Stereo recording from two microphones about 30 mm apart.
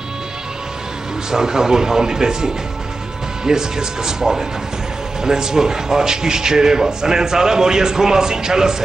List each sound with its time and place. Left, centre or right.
1.3 s a man's voice: centre